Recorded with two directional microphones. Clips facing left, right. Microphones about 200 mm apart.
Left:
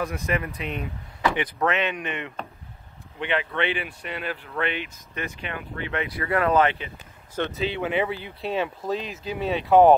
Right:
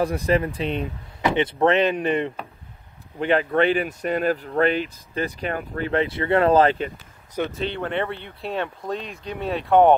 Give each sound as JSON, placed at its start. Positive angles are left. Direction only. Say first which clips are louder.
{"t": 0.0, "sound": "speech", "louder": "right 6 dB", "side_deg": -35}
{"t": 6.0, "sound": "speech", "louder": "right 3 dB", "side_deg": -25}
{"t": 7.5, "sound": "speech", "louder": "left 1 dB", "side_deg": 5}